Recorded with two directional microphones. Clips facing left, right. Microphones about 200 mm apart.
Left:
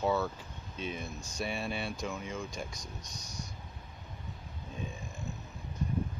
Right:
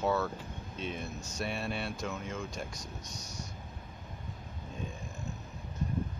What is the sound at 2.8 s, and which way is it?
Speech, 25° right (ahead or behind).